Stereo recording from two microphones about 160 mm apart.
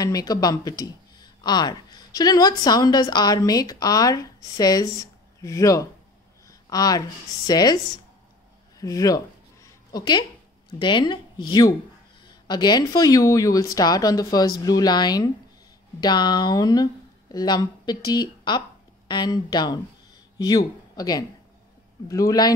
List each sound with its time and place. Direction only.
0.0 s speech: 25° left (ahead or behind)
8.7 s a sound: 20° left (ahead or behind)
10.8 s a woman's voice: 30° left (ahead or behind)